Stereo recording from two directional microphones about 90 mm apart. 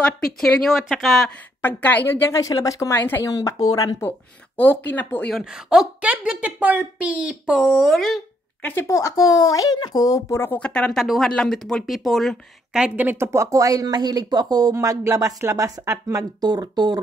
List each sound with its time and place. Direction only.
0.0 s speech: 5° left (ahead or behind)
1.6 s a woman's voice: 20° left (ahead or behind)
2.4 s speech: 40° left (ahead or behind)
3.0 s a woman's voice: 25° left (ahead or behind)
3.3 s speech: 40° left (ahead or behind)
4.6 s a woman's voice: 20° left (ahead or behind)
5.3 s a woman's voice: 5° right (ahead or behind)
8.8 s speech: 35° left (ahead or behind)
10.6 s speech: 10° left (ahead or behind)
12.7 s speech: 15° right (ahead or behind); by 17.0 s 50° right (ahead or behind)